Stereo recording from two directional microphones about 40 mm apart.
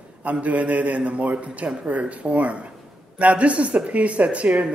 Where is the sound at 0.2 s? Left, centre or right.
Right.